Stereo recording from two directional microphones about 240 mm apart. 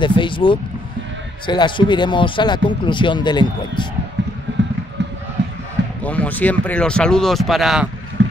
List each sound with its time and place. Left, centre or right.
0.0 s speech: centre
4.2 s vehicle: right
6.0 s speech: centre
8.2 s boat: right